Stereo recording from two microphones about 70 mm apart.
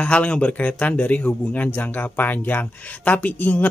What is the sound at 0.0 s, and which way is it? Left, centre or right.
Speech, centre.